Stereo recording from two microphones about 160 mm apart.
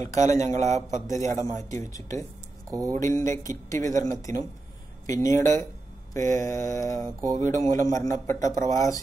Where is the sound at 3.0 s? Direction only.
20° left (ahead or behind).